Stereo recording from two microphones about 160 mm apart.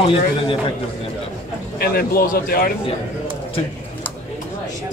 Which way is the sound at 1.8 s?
70° left (ahead or behind).